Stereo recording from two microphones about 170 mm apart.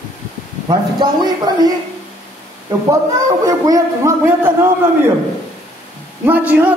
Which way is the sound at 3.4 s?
20° right (ahead or behind).